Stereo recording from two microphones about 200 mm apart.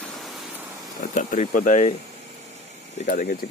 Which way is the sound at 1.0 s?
40° left (ahead or behind).